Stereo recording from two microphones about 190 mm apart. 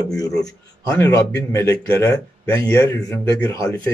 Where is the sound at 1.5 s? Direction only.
10° left (ahead or behind).